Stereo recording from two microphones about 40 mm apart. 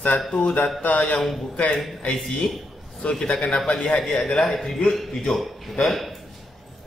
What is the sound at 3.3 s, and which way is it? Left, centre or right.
Speech, left.